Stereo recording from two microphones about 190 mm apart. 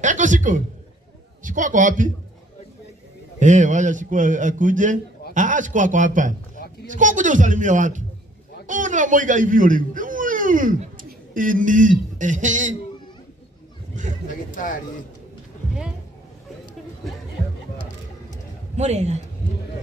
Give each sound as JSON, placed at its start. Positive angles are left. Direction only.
{"t": 0.0, "sound": "a man's voice", "side_deg": -40}
{"t": 3.3, "sound": "a man's voice", "side_deg": -40}
{"t": 14.5, "sound": "a sound", "side_deg": 45}
{"t": 18.8, "sound": "a man's voice", "side_deg": -35}